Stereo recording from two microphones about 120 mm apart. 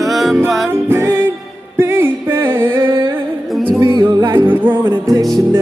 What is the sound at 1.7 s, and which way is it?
Music, 20° right (ahead or behind).